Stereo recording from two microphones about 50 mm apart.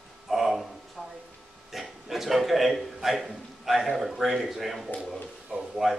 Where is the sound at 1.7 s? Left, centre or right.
Centre.